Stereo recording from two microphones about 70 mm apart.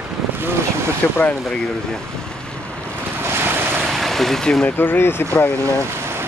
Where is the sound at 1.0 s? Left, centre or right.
Centre.